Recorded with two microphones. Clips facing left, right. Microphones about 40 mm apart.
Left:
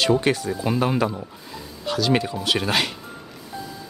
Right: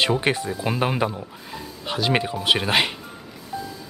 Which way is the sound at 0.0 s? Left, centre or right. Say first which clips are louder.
Left 1 dB; right.